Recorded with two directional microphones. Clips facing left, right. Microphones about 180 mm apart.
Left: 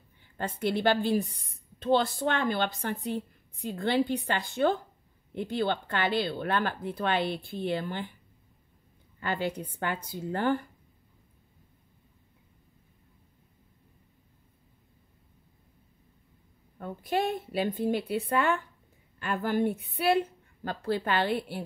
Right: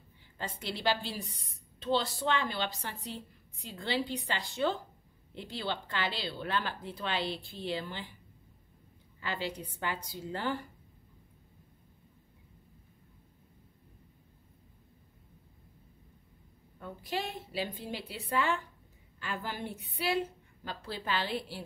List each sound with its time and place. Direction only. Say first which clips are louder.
0.4 s a woman's voice: left 9 dB; 55° left (ahead or behind)
9.2 s a woman's voice: left 6 dB; 50° left (ahead or behind)
16.8 s a woman's voice: left 8 dB; 55° left (ahead or behind)